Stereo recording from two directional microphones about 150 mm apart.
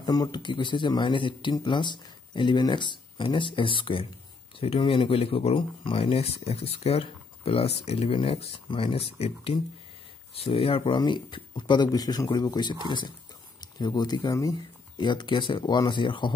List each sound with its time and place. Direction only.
0.0 s speech: 25° left (ahead or behind)